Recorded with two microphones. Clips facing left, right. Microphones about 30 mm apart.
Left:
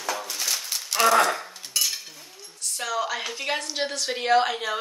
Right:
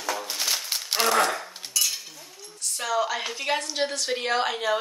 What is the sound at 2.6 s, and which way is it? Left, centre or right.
A woman's voice, centre.